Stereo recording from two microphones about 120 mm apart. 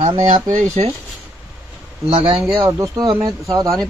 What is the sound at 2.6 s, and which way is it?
Speech, 30° right (ahead or behind).